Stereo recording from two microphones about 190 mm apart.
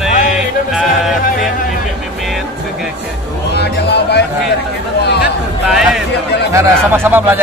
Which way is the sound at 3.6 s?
60° left (ahead or behind).